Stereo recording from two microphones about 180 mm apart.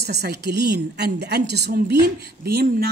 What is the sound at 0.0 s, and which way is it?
A woman's voice, 65° right (ahead or behind).